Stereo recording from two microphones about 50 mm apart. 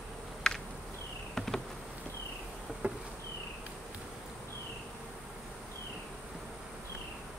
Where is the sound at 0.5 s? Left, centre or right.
Centre.